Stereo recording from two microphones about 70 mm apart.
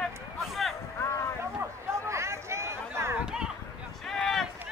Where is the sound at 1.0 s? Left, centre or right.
Left.